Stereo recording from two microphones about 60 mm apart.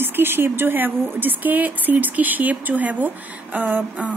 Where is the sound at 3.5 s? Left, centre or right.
Right.